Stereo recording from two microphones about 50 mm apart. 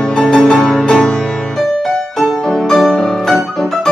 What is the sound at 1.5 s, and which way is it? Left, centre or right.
Music, centre.